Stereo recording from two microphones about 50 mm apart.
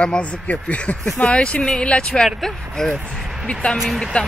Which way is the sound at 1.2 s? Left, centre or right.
Left.